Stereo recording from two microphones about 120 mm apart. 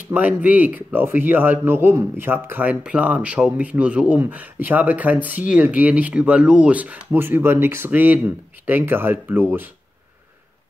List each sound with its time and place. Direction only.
0.1 s speech: 10° right (ahead or behind)